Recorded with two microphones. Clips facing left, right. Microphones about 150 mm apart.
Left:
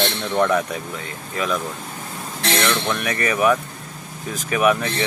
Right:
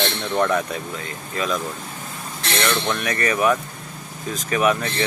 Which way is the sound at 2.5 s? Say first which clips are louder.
Even; centre (ahead or behind).